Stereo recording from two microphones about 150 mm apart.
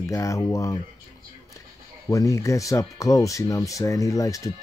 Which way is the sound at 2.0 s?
20° left (ahead or behind).